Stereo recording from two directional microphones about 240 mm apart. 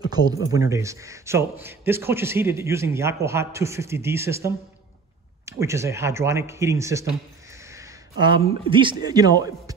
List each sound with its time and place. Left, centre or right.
0.1 s a man's voice: centre